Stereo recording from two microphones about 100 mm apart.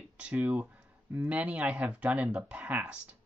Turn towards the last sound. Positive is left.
turn(degrees=-10)  # may be behind; listen again after turning